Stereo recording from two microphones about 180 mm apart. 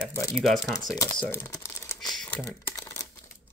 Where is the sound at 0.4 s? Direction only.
Centre (ahead or behind).